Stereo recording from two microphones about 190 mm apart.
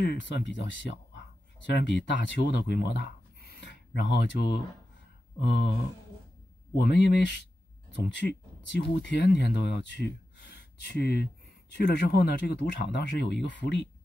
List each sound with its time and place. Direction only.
0.0 s speech: 70° left (ahead or behind)
6.8 s speech: 65° left (ahead or behind)